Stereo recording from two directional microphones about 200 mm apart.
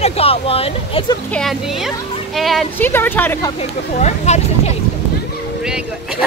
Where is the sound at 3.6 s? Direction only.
35° left (ahead or behind).